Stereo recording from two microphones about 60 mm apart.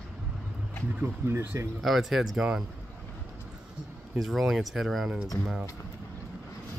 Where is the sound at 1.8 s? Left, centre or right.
Centre.